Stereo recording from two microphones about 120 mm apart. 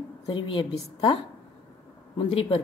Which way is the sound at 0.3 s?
45° left (ahead or behind).